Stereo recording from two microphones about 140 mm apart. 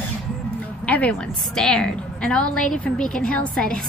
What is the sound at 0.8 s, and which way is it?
A woman's voice, 10° left (ahead or behind).